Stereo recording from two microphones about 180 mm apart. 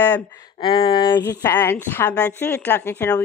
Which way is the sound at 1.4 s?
10° left (ahead or behind).